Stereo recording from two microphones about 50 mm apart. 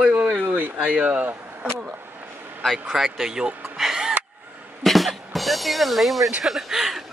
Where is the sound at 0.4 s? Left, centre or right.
Right.